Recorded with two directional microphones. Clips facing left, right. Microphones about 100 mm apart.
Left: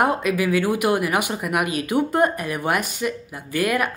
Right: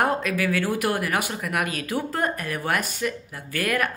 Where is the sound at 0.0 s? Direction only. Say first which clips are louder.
Left 3 dB; 15° left (ahead or behind).